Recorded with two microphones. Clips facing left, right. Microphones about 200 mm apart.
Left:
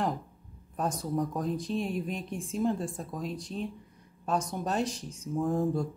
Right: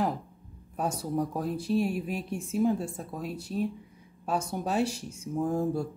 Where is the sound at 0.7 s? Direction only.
10° right (ahead or behind).